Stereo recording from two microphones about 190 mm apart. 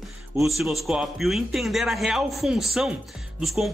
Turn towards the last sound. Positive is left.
turn(degrees=0)  # may be behind; listen again after turning